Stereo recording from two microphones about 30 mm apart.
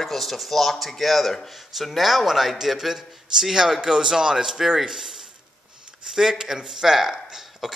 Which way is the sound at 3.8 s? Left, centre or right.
Right.